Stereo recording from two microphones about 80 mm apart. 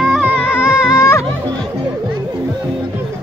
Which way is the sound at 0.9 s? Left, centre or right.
Left.